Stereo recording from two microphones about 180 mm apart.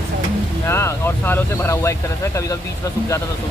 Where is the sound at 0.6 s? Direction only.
15° left (ahead or behind).